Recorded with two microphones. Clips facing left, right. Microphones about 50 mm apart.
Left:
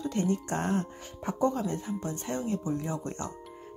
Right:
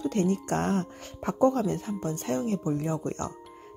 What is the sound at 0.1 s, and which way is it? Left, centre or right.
Speech, right.